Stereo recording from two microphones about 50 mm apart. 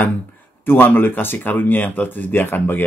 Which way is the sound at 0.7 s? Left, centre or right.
Left.